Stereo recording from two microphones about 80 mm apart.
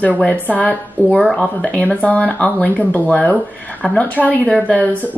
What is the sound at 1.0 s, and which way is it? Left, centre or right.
Speech, centre.